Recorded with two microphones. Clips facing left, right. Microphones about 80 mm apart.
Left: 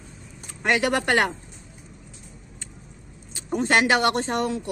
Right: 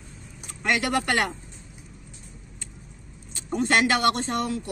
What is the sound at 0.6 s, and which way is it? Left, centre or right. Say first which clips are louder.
Speech: left 2 dB; left.